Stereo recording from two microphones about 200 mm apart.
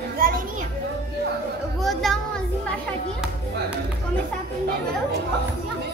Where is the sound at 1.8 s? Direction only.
Centre (ahead or behind).